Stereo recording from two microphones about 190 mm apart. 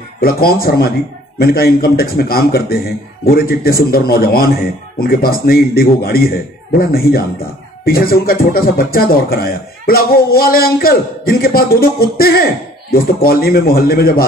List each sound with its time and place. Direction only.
0.2 s speech: 55° left (ahead or behind)